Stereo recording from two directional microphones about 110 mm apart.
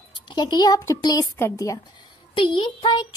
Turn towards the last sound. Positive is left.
turn(degrees=50)  # may be behind; listen again after turning